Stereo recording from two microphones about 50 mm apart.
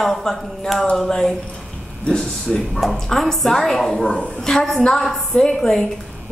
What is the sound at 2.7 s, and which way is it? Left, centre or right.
A woman's voice, centre.